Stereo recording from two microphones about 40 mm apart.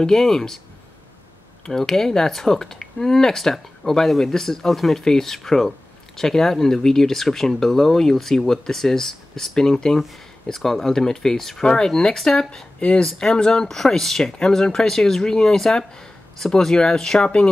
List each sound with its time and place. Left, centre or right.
0.0 s speech: centre
1.7 s speech: centre